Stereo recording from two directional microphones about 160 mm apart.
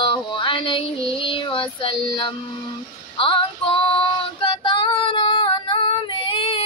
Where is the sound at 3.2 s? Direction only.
35° left (ahead or behind).